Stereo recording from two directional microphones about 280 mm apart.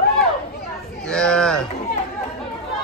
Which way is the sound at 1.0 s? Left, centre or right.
Centre.